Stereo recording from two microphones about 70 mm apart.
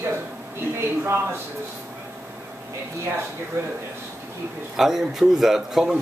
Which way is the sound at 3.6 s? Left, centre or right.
Right.